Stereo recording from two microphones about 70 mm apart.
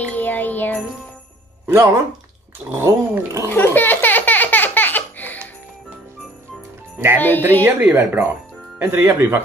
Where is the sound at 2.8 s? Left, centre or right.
Right.